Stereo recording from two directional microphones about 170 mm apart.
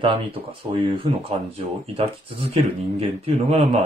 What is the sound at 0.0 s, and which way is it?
Speech, 30° right (ahead or behind).